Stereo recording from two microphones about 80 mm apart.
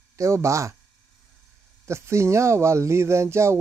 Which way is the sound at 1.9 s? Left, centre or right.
Right.